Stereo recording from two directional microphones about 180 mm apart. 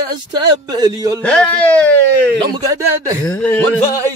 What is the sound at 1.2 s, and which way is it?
A man's voice, 5° left (ahead or behind).